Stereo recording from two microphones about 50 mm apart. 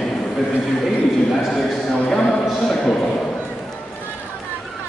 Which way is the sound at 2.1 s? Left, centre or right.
Centre.